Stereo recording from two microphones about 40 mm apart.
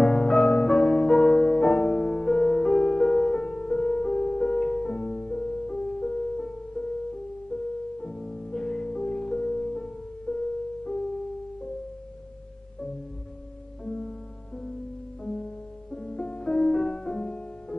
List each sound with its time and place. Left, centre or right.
0.0 s music: centre
8.0 s music: centre
13.8 s music: left
15.2 s music: left